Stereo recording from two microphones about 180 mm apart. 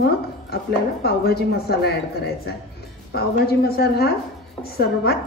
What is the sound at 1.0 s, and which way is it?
A woman's voice, 60° left (ahead or behind).